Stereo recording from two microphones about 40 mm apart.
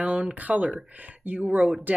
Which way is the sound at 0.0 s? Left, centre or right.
Right.